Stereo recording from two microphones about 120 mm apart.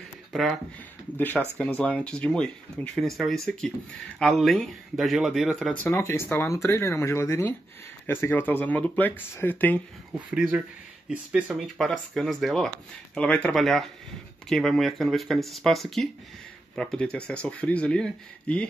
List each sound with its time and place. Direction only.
0.3 s speech: centre (ahead or behind)
1.1 s speech: 15° left (ahead or behind)
5.9 s speech: 20° left (ahead or behind)
10.1 s speech: 10° right (ahead or behind)
11.6 s speech: centre (ahead or behind)